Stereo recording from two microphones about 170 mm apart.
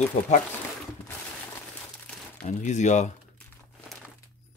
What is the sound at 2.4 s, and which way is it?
Speech, 45° left (ahead or behind).